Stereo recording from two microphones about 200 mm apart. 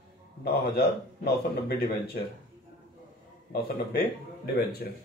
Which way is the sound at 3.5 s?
50° left (ahead or behind).